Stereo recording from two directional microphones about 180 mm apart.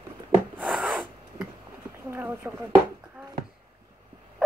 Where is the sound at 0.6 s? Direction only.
Centre (ahead or behind).